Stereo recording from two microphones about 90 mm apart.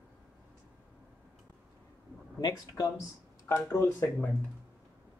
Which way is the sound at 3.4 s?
30° left (ahead or behind).